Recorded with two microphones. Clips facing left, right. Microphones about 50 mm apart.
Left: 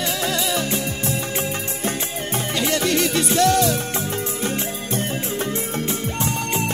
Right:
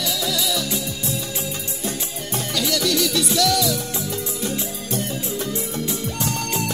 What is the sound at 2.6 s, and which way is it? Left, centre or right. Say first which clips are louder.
Music: left 1 dB; left.